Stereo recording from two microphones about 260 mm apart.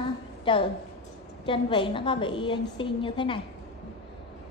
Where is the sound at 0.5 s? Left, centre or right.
Centre.